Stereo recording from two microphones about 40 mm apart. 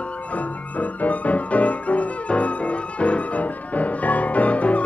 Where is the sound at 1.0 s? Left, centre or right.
Left.